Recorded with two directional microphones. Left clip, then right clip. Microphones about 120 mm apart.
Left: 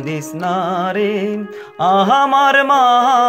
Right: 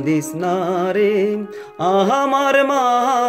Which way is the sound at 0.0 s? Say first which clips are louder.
Right 2 dB; 10° right (ahead or behind).